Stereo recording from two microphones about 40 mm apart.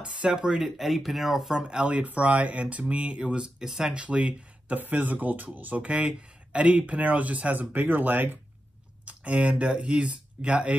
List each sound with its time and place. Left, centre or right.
0.0 s speech: right
0.7 s speech: centre
1.6 s speech: right
2.0 s speech: right; by 3.9 s centre
3.9 s speech: right
4.7 s speech: right
5.9 s speech: right
9.0 s speech: right